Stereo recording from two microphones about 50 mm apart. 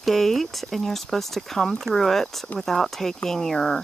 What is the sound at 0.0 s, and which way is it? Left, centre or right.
Speech, centre.